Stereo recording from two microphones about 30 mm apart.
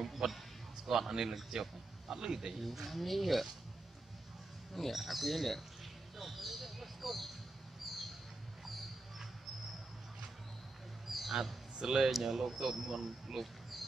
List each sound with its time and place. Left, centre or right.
0.0 s a man's voice: centre
2.6 s speech: centre
4.9 s speech: centre
8.6 s mouse: centre
11.1 s a sound: centre
11.8 s speech: right
13.4 s speech: centre